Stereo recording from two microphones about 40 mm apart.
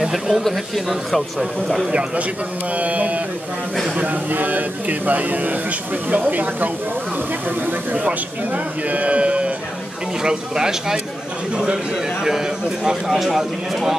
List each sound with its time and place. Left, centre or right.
0.0 s speech: centre
1.9 s a man's voice: right
7.9 s speech: right
10.2 s speech: centre
11.5 s a man's voice: right
13.1 s speech: centre